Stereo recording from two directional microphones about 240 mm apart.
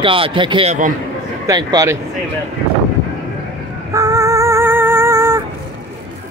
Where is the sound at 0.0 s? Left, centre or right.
Right.